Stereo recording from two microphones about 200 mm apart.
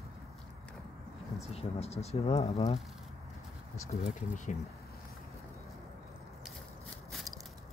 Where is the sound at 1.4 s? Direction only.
30° left (ahead or behind).